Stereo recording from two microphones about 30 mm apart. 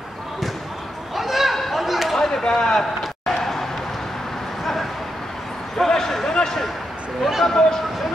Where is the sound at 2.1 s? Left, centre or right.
Centre.